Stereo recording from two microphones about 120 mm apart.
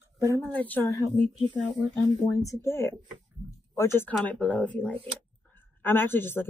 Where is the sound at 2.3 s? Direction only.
25° left (ahead or behind).